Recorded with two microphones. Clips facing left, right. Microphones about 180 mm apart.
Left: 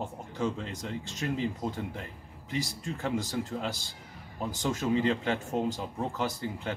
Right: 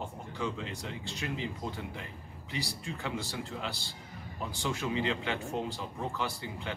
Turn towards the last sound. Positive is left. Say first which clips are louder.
# left 4 dB
turn(degrees=45)  # may be behind; listen again after turning